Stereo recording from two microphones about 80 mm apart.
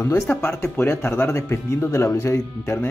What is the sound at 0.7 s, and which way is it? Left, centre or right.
Speech, left.